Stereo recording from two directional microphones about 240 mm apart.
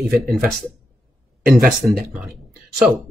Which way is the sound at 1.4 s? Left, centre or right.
Right.